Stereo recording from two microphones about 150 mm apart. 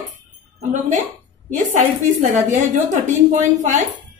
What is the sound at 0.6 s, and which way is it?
Speech, 55° right (ahead or behind).